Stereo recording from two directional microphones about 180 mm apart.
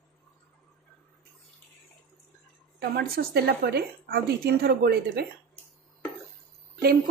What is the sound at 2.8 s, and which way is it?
A woman's voice, 60° right (ahead or behind).